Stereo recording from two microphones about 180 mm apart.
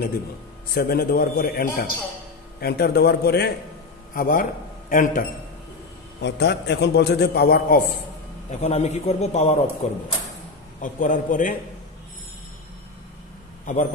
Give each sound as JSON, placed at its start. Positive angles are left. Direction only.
{"t": 0.7, "sound": "a man's voice", "side_deg": 55}
{"t": 4.1, "sound": "a man's voice", "side_deg": 50}
{"t": 6.2, "sound": "a man's voice", "side_deg": 70}
{"t": 8.5, "sound": "a man's voice", "side_deg": 40}
{"t": 13.7, "sound": "a man's voice", "side_deg": 45}